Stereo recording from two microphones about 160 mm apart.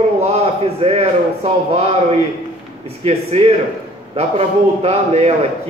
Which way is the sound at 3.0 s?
40° right (ahead or behind).